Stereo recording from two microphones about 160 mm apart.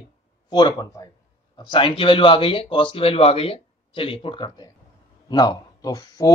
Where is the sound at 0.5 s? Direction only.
25° left (ahead or behind).